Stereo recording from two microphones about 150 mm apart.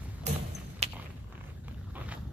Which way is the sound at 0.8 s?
45° right (ahead or behind).